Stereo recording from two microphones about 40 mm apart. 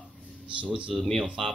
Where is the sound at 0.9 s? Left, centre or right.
Centre.